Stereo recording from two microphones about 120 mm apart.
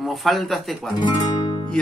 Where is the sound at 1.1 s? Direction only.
35° left (ahead or behind).